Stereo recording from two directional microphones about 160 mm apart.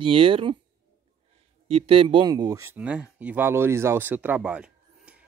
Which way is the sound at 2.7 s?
5° right (ahead or behind).